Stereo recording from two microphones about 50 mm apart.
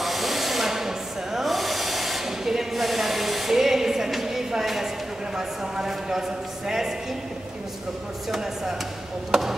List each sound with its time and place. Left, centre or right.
0.0 s a sound: centre
5.8 s speech: centre
9.3 s speech: centre